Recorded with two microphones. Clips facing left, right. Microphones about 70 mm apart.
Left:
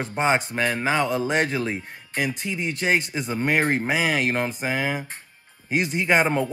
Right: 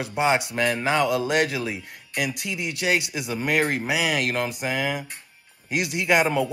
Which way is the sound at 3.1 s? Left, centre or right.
Left.